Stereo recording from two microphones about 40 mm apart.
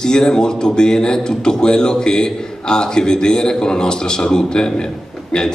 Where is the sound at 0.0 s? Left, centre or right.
Centre.